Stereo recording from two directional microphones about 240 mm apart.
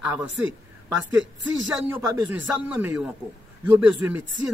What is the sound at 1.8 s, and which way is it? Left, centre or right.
A man's voice, centre.